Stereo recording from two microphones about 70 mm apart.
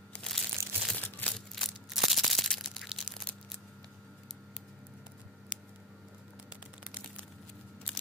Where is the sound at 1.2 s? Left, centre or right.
Left.